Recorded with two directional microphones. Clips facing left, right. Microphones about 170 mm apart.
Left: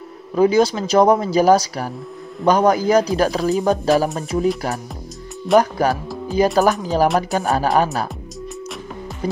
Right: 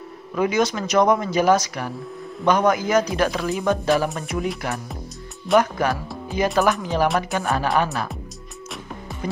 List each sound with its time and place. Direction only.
0.4 s speech: 35° left (ahead or behind)
5.6 s speech: 35° left (ahead or behind)
9.2 s speech: 35° left (ahead or behind)